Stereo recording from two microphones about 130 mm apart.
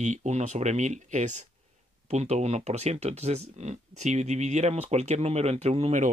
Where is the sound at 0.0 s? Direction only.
65° right (ahead or behind).